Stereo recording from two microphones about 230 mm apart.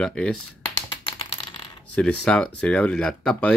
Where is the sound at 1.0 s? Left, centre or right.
Left.